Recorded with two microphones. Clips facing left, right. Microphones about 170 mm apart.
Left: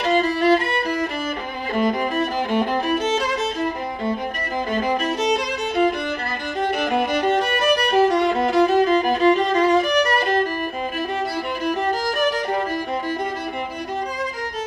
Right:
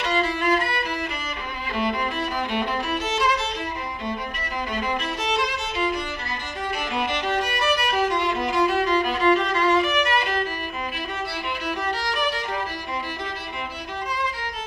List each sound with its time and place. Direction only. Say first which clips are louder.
0.0 s violin: left 5 dB; 45° left (ahead or behind)
1.8 s music: left 5 dB; 45° left (ahead or behind)
12.2 s violin: left 6 dB; 45° left (ahead or behind)